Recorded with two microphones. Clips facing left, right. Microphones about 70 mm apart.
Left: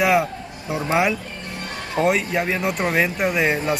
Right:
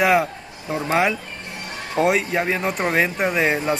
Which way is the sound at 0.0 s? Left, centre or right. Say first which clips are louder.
Right 1 dB; centre.